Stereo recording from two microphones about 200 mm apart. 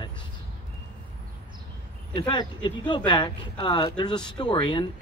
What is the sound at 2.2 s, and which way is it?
Speech, 25° left (ahead or behind).